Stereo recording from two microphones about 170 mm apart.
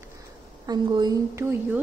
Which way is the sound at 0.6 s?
25° right (ahead or behind).